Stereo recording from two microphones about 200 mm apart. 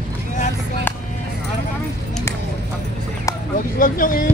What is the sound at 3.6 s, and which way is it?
Speech, 40° left (ahead or behind).